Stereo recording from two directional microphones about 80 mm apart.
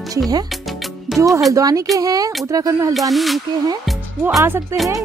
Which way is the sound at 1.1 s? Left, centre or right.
Centre.